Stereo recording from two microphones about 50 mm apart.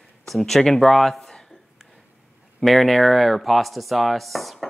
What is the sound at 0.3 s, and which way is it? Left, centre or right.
Speech, centre.